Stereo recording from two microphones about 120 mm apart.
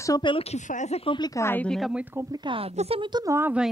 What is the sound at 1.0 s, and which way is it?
Speech, 40° left (ahead or behind).